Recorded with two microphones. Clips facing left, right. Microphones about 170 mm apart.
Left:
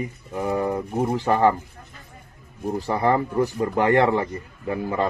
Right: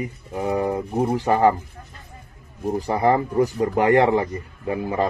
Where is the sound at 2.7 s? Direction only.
15° right (ahead or behind).